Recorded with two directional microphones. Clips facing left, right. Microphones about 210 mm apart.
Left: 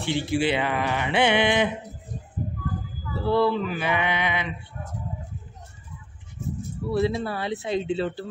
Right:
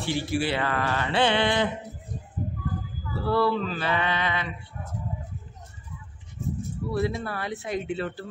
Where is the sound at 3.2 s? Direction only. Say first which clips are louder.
Left 2 dB; 20° left (ahead or behind).